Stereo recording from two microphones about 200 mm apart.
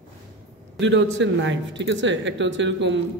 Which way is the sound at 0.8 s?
65° right (ahead or behind).